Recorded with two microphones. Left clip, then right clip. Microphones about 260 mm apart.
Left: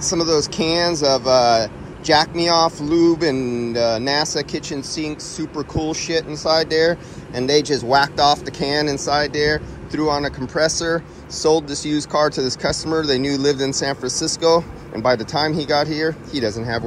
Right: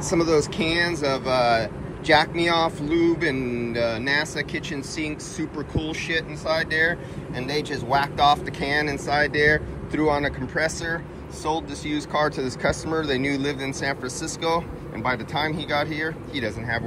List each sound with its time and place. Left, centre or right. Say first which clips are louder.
0.0 s speech: left 2 dB; centre